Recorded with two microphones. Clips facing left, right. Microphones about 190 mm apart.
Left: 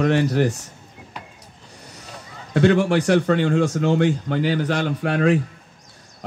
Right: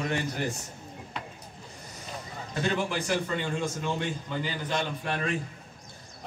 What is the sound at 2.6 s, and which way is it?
Speech, 75° left (ahead or behind).